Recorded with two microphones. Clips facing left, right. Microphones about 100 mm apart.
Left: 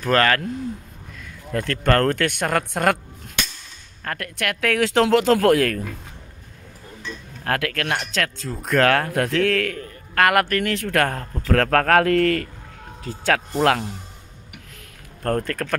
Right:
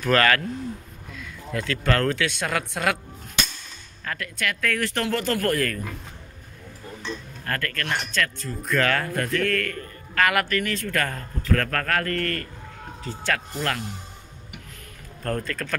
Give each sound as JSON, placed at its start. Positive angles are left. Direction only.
{"t": 0.0, "sound": "speech", "side_deg": 30}
{"t": 1.5, "sound": "speech", "side_deg": 50}
{"t": 4.0, "sound": "speech", "side_deg": 55}
{"t": 7.4, "sound": "speech", "side_deg": 70}
{"t": 10.2, "sound": "speech", "side_deg": 55}
{"t": 13.3, "sound": "speech", "side_deg": 75}
{"t": 15.2, "sound": "speech", "side_deg": 55}